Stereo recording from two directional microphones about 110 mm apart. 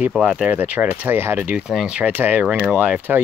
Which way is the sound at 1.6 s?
5° right (ahead or behind).